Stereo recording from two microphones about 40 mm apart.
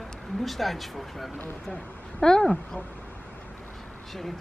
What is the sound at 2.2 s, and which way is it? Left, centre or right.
Speech, centre.